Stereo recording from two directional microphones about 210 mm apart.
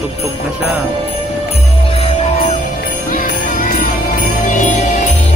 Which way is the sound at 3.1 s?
45° left (ahead or behind).